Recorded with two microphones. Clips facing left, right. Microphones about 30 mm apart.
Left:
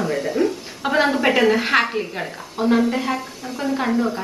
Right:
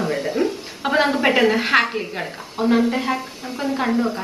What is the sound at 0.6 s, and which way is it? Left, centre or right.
A woman's voice, centre.